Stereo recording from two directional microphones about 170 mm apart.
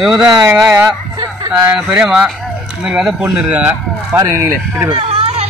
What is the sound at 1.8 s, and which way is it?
Speech, 5° right (ahead or behind).